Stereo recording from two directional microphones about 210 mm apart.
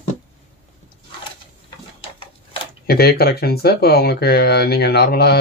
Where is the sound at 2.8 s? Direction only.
45° left (ahead or behind).